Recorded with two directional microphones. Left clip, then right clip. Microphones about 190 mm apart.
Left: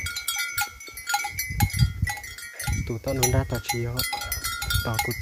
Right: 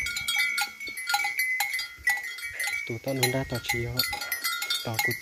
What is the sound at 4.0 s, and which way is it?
Cowbell, 55° left (ahead or behind).